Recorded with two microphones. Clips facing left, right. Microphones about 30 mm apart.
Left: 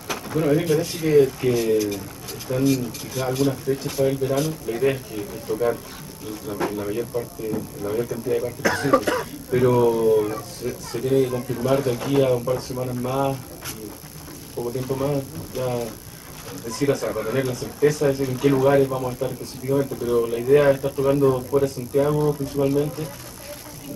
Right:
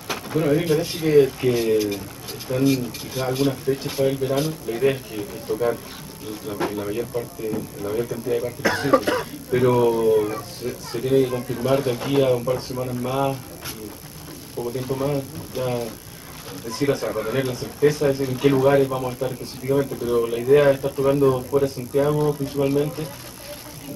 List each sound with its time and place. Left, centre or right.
0.1 s speech: centre
14.6 s a man's voice: centre